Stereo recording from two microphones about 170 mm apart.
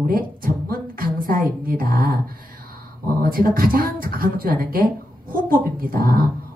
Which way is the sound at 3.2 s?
60° right (ahead or behind).